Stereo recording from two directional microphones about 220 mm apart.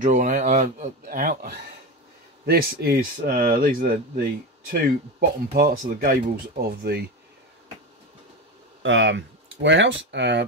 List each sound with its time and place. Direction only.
0.0 s speech: 35° right (ahead or behind)
8.8 s speech: 60° right (ahead or behind)